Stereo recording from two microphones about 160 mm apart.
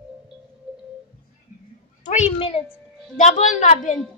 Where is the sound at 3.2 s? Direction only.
45° left (ahead or behind).